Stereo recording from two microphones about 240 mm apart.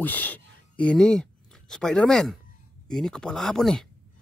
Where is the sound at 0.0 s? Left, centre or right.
Centre.